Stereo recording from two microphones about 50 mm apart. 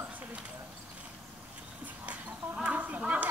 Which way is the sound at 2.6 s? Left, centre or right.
Right.